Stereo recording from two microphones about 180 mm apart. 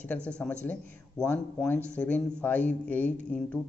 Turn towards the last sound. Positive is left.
turn(degrees=10)  # may be behind; listen again after turning